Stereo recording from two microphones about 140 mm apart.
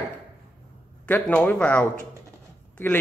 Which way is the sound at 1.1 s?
15° left (ahead or behind).